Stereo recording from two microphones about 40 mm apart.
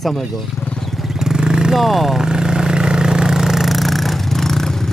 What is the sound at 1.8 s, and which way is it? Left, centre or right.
Speech, centre.